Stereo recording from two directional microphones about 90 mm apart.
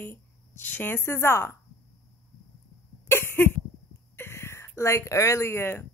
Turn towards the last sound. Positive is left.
turn(degrees=30)  # may be behind; listen again after turning